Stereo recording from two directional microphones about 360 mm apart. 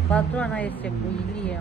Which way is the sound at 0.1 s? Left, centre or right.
Centre.